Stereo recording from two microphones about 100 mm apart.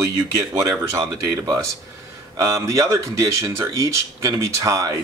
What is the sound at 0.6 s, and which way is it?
Speech, 30° right (ahead or behind).